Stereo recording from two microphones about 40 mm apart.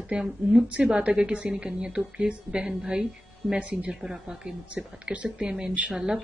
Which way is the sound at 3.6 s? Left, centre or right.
Right.